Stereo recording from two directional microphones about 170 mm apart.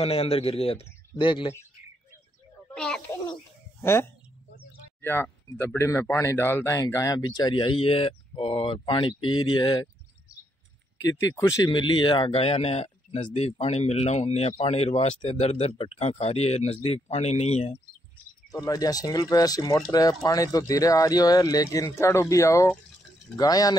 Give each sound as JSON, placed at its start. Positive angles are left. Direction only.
{"t": 0.0, "sound": "a man's voice", "side_deg": 35}
{"t": 2.7, "sound": "snake", "side_deg": 5}
{"t": 3.8, "sound": "speech", "side_deg": 15}
{"t": 11.3, "sound": "a man's voice", "side_deg": 20}
{"t": 18.5, "sound": "speech", "side_deg": 20}